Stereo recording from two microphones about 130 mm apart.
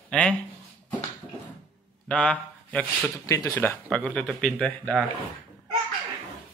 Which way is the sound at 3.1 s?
25° left (ahead or behind).